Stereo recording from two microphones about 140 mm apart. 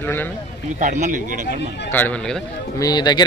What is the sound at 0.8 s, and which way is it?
Speech, 65° right (ahead or behind).